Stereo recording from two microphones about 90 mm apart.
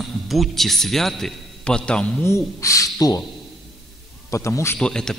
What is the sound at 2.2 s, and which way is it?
Speech, 35° left (ahead or behind).